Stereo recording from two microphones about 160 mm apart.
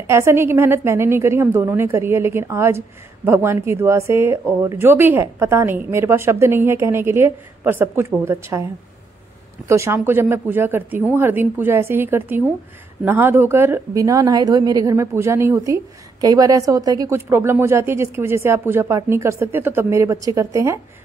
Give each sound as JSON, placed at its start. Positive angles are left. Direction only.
{"t": 0.0, "sound": "speech", "side_deg": -15}
{"t": 9.7, "sound": "speech", "side_deg": -15}